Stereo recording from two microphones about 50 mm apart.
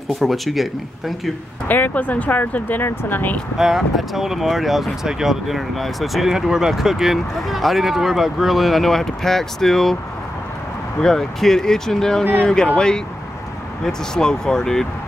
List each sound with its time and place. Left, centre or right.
0.2 s speech: centre
1.7 s speech: left
3.5 s speech: centre
6.3 s speech: centre
11.0 s speech: centre